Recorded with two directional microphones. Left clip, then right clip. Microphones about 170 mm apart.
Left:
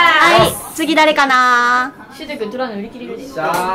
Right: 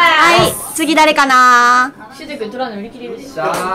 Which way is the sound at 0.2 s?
15° right (ahead or behind).